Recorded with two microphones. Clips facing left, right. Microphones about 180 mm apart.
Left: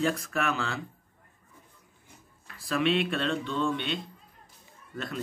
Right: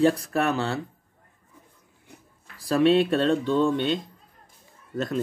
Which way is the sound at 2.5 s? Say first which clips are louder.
Right 7 dB; 40° right (ahead or behind).